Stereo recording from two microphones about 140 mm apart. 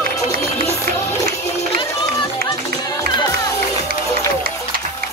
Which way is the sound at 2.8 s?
25° left (ahead or behind).